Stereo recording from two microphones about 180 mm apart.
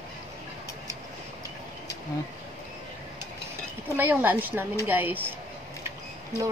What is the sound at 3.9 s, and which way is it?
A woman's voice, 10° right (ahead or behind).